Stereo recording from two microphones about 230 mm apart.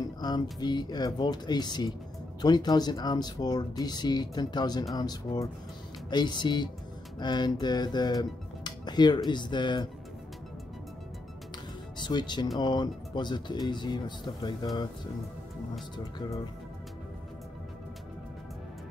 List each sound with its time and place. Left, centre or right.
0.2 s speech: centre
12.0 s speech: centre